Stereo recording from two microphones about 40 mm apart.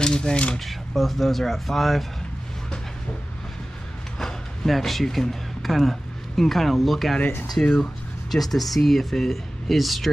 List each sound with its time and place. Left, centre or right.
0.0 s speech: left
0.7 s speech: centre
4.6 s speech: centre
7.2 s speech: left
8.3 s speech: centre